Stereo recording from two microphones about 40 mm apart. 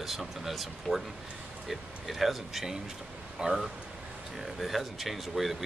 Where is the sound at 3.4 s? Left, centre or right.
Right.